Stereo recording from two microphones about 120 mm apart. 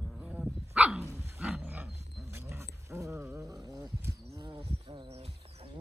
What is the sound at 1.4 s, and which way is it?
Wild animals, 15° right (ahead or behind).